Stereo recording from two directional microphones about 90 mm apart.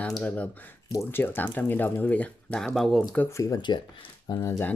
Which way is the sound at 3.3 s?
40° left (ahead or behind).